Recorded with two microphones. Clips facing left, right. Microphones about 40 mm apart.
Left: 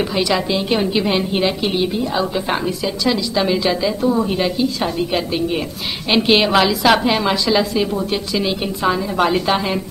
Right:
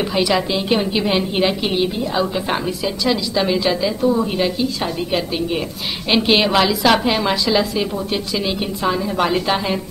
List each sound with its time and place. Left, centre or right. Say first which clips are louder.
0.1 s a woman's voice: even; centre